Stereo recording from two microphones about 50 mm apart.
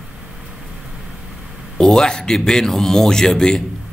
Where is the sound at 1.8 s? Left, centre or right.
Centre.